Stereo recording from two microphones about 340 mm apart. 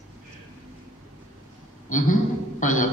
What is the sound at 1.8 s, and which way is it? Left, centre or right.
A man's voice, left.